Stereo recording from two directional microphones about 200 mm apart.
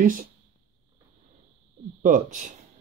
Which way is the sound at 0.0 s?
45° right (ahead or behind).